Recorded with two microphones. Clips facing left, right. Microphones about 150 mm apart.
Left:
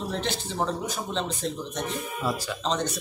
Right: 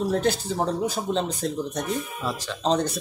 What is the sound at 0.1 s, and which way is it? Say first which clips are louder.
Speech: right 7 dB; 40° right (ahead or behind).